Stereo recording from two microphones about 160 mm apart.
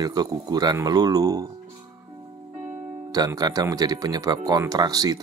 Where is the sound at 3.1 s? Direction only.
25° right (ahead or behind).